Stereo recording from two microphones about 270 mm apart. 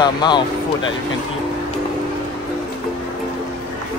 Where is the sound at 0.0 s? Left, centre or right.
Centre.